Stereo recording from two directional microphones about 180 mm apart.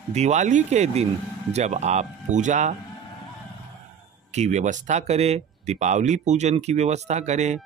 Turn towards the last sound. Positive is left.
turn(degrees=-40)  # may be behind; listen again after turning